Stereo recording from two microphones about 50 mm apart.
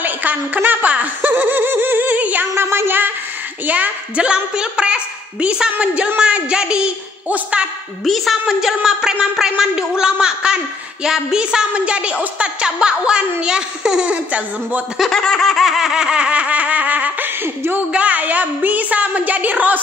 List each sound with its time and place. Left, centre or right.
0.0 s snicker: right
2.5 s a sound: right
3.6 s a woman's voice: right
4.2 s a woman's voice: centre
7.2 s a woman's voice: right
8.0 s a woman's voice: centre
8.5 s a woman's voice: centre
14.0 s a woman's voice: right
15.0 s snicker: centre; by 17.3 s right
17.4 s a woman's voice: right
17.9 s a woman's voice: right